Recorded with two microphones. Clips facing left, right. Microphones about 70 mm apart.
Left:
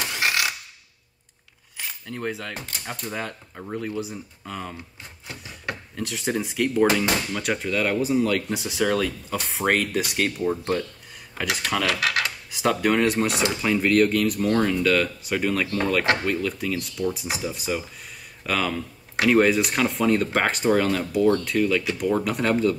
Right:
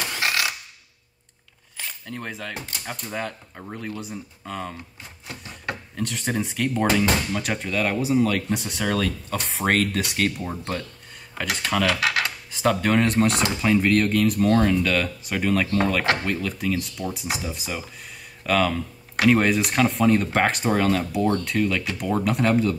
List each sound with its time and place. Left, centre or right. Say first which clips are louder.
0.2 s mechanisms: left 1 dB; centre
1.8 s speech: left 2 dB; centre
5.9 s speech: even; centre
12.0 s speech: right 1 dB; right
12.4 s speech: even; centre